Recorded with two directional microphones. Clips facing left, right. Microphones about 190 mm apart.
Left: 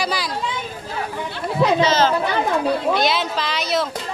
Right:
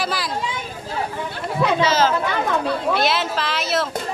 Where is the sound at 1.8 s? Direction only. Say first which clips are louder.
Left 1 dB; 5° right (ahead or behind).